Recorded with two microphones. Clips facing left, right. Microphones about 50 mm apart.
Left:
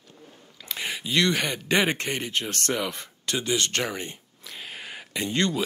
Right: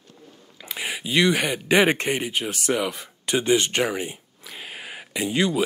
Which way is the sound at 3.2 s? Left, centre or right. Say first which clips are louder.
Right 6 dB; right.